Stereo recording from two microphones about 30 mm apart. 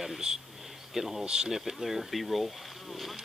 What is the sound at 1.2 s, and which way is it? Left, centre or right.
Speech, right.